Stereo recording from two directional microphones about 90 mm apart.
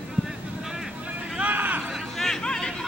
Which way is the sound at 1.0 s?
15° right (ahead or behind).